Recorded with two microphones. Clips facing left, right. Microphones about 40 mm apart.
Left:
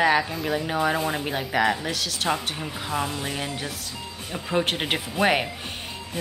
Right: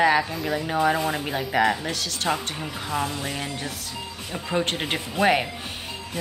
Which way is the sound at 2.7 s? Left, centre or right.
Left.